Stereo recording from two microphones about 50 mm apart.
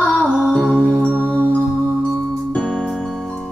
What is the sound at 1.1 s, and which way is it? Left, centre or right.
Music, left.